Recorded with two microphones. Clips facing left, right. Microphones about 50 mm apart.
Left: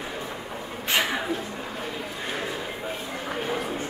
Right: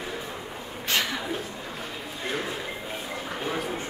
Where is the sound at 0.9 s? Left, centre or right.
Centre.